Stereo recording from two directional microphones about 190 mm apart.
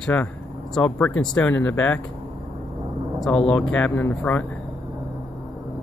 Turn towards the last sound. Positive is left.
turn(degrees=10)  # may be behind; listen again after turning